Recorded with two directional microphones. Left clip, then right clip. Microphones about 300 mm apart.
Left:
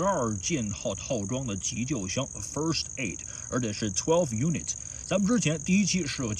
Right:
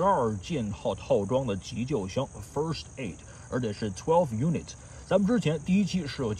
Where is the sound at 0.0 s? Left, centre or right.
Centre.